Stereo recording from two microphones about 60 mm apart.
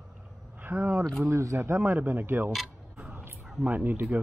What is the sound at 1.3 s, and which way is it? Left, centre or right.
Speech, right.